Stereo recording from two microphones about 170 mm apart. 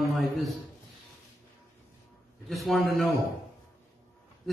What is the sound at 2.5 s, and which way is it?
Speech, centre (ahead or behind).